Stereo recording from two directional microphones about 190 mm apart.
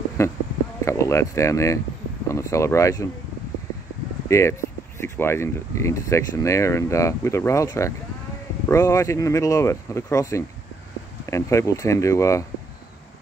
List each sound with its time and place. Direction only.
0.2 s speech: 15° left (ahead or behind)
4.3 s speech: 15° left (ahead or behind)